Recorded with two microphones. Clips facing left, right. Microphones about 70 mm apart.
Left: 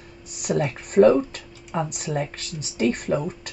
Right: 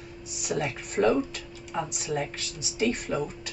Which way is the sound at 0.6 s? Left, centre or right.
Left.